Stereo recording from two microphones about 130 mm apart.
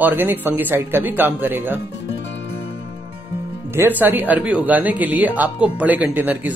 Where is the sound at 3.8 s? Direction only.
15° right (ahead or behind).